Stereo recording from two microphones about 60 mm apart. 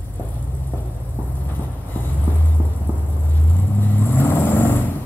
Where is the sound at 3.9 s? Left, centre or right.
Left.